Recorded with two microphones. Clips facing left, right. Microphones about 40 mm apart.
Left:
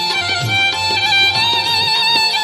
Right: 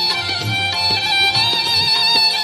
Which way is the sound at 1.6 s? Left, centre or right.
Centre.